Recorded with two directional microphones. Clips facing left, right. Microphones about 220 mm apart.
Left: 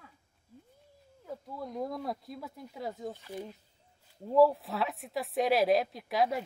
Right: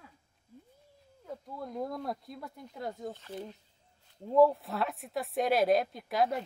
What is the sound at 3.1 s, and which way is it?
Speech, 10° left (ahead or behind).